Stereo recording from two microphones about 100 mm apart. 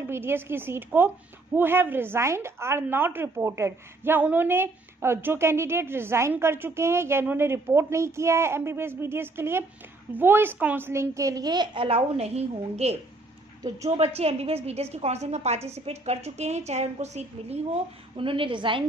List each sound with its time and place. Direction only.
0.0 s a woman's voice: 25° right (ahead or behind)
10.9 s a woman's voice: 30° right (ahead or behind); by 17.6 s 90° right
18.1 s a woman's voice: 60° right (ahead or behind)